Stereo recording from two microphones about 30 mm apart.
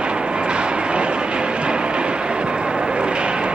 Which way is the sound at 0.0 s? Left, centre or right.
Right.